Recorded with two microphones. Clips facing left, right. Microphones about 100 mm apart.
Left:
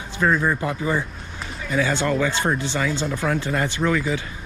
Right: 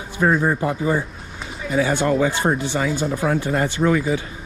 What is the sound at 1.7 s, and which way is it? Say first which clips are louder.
Speech: right 3 dB; 35° right (ahead or behind).